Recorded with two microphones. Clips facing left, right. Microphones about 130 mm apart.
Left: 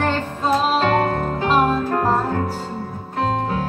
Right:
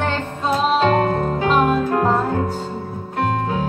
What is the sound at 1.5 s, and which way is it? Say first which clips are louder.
Music: even; 35° left (ahead or behind).